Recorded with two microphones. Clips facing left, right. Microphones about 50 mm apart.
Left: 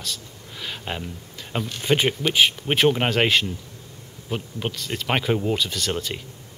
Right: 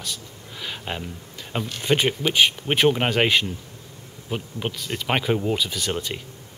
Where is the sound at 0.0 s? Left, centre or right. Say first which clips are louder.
Even; centre.